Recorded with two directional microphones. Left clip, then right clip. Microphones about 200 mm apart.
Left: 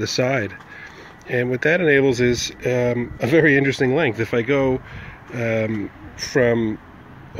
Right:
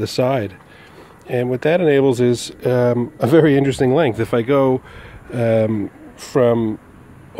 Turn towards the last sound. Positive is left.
turn(degrees=-15)  # may be behind; listen again after turning